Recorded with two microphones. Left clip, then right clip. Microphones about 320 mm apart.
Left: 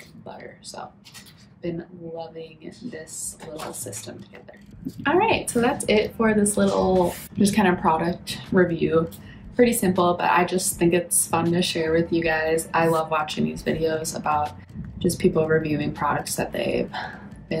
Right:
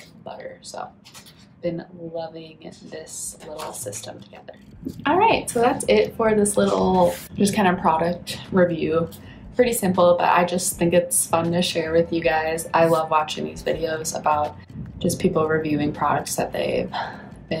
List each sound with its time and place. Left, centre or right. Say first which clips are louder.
1.6 s a woman's voice: right 4 dB; centre